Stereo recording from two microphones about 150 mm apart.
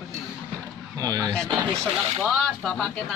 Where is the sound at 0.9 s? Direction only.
25° right (ahead or behind).